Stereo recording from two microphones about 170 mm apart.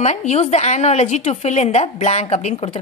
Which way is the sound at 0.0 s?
40° left (ahead or behind).